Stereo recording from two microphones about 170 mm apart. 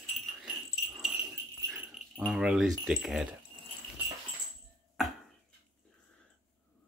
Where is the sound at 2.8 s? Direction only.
Centre (ahead or behind).